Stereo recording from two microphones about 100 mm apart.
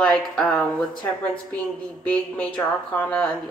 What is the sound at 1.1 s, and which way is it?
Speech, 15° left (ahead or behind).